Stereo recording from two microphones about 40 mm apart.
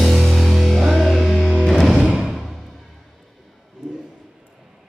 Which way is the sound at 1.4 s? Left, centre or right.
Centre.